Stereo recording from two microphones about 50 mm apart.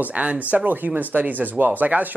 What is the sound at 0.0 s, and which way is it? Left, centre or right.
Speech, right.